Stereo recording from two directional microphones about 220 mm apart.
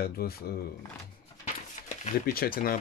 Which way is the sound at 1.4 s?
35° left (ahead or behind).